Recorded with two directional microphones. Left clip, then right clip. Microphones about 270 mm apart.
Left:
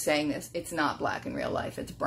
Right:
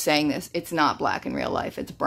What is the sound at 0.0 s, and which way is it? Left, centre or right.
Speech, right.